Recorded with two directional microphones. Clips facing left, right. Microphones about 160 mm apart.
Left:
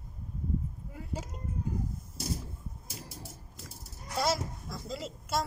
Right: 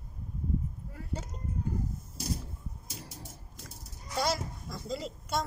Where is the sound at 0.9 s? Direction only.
10° left (ahead or behind).